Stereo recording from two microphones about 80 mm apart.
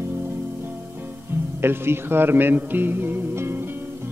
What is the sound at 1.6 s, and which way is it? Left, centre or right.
Speech, right.